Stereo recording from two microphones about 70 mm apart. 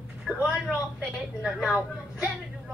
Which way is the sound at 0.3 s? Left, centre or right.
Centre.